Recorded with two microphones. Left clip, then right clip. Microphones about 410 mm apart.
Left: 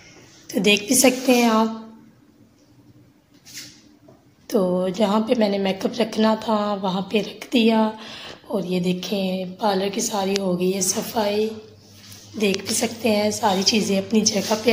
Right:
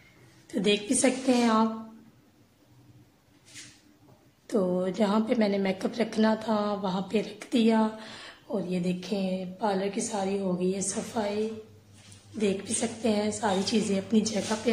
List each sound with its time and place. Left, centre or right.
0.6 s a woman's voice: right
4.5 s a woman's voice: right
12.4 s a woman's voice: right